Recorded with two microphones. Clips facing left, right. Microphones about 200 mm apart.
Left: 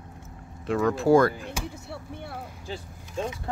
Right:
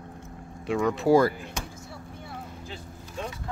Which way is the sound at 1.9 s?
65° left (ahead or behind).